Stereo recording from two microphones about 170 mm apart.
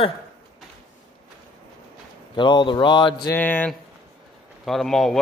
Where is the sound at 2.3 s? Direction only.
25° left (ahead or behind).